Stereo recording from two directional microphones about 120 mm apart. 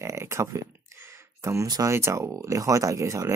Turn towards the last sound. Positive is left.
turn(degrees=-25)  # may be behind; listen again after turning